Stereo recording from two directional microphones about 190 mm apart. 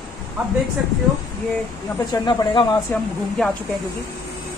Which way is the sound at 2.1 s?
20° left (ahead or behind).